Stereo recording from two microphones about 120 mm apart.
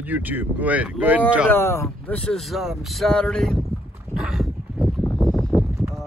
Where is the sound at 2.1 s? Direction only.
10° left (ahead or behind).